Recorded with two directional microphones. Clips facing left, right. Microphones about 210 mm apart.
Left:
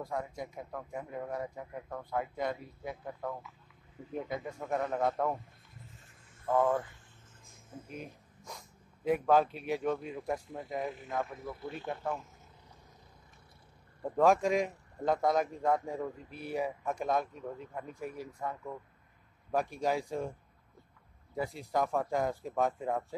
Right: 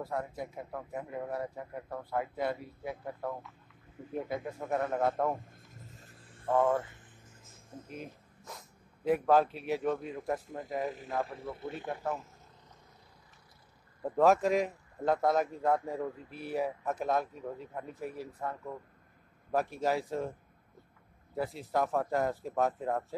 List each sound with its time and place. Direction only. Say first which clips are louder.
0.0 s speech: right 1 dB; 5° right (ahead or behind)
5.8 s a sound: right 1 dB; 35° right (ahead or behind)
6.5 s speech: right 1 dB; 10° right (ahead or behind)
11.2 s a man's voice: right 1 dB; 30° right (ahead or behind)
11.9 s speech: even; 5° right (ahead or behind)
14.0 s speech: right 1 dB; centre (ahead or behind)
21.4 s speech: right 1 dB; centre (ahead or behind)